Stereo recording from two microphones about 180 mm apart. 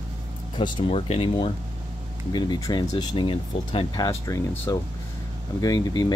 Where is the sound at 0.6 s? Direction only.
30° left (ahead or behind).